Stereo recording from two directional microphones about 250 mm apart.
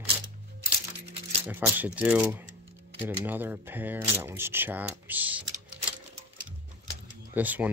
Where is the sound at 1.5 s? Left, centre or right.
Centre.